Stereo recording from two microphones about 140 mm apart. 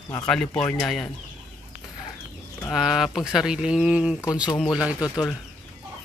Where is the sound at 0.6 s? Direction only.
10° left (ahead or behind).